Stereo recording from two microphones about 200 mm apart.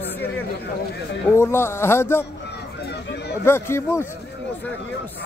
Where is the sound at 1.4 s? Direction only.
10° left (ahead or behind).